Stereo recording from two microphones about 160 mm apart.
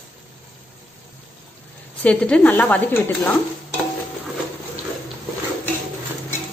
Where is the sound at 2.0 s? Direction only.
10° left (ahead or behind).